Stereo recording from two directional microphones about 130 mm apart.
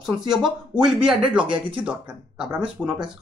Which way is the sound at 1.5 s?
40° right (ahead or behind).